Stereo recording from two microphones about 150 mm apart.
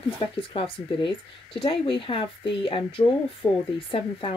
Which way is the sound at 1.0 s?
35° left (ahead or behind).